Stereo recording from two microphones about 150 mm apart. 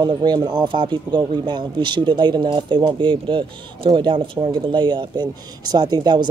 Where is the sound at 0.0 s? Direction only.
30° right (ahead or behind).